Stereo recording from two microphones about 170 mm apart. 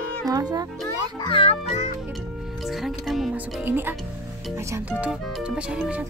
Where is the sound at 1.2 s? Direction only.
35° left (ahead or behind).